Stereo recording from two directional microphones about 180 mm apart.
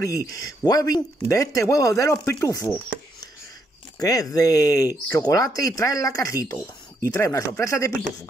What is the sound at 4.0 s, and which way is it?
Speech, 20° left (ahead or behind).